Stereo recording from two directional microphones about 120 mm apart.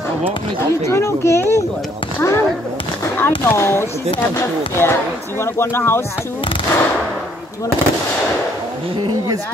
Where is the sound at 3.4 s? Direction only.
20° left (ahead or behind).